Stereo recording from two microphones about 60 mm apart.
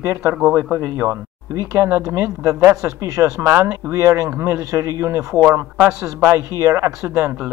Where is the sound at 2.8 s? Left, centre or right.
Right.